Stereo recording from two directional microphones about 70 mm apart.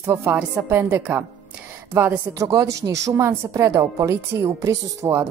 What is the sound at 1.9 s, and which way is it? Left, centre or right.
Speech, right.